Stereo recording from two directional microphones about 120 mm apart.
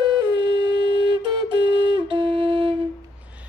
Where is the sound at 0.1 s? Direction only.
40° right (ahead or behind).